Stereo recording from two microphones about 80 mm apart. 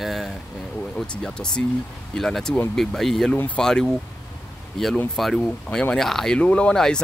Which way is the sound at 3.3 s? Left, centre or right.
Left.